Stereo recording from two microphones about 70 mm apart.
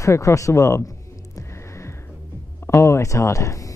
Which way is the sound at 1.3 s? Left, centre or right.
Left.